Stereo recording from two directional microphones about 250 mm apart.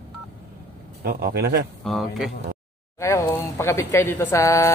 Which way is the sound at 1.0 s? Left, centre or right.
Right.